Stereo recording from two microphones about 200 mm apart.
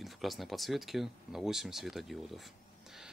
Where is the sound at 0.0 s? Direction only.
Centre (ahead or behind).